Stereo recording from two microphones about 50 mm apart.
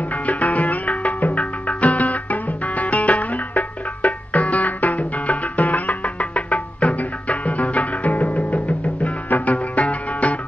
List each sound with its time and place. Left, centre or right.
0.0 s music: left